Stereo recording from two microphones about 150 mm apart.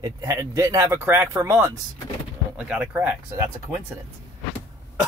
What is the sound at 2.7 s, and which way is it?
Speech, 10° right (ahead or behind).